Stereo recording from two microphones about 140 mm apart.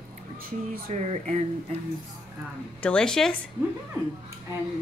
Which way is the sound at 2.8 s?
5° left (ahead or behind).